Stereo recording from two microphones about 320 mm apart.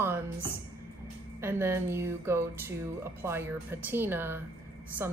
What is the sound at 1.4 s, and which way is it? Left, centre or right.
Speech, centre.